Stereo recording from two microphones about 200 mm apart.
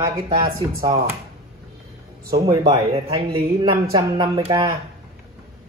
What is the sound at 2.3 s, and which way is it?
Speech, 25° right (ahead or behind).